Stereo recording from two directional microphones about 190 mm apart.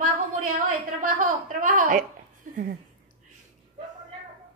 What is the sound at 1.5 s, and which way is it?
Speech, 45° right (ahead or behind).